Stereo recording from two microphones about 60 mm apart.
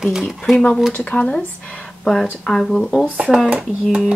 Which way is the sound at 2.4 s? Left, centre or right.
Centre.